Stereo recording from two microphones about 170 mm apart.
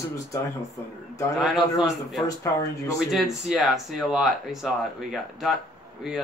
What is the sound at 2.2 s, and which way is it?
Speech, 20° left (ahead or behind).